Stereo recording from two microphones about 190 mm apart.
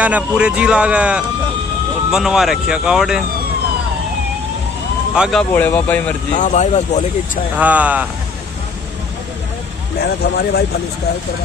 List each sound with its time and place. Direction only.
0.0 s a man's voice: 5° right (ahead or behind)
5.1 s speech: centre (ahead or behind)
6.3 s speech: 40° left (ahead or behind)
7.5 s a man's voice: 10° right (ahead or behind)
9.9 s speech: 55° left (ahead or behind)